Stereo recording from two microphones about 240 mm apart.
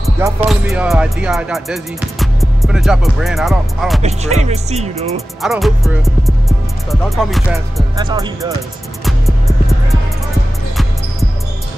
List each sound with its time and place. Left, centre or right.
0.5 s music: centre
4.0 s music: right
5.4 s music: centre
7.9 s speech: centre